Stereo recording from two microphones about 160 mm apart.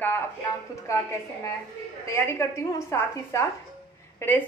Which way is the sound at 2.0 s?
15° left (ahead or behind).